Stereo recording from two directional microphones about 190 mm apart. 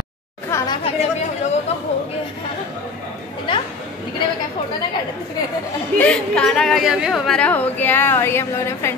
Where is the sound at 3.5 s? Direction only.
25° left (ahead or behind).